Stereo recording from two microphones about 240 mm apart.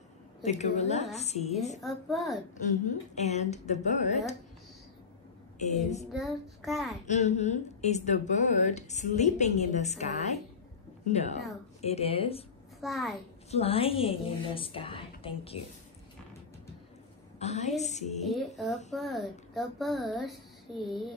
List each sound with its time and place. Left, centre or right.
0.4 s speech: left
1.8 s a child's voice: centre
2.7 s speech: left
5.6 s speech: left
6.1 s a child's voice: centre
7.1 s speech: left
12.8 s a child's voice: centre
13.5 s speech: left
17.4 s speech: left
18.2 s a child's voice: centre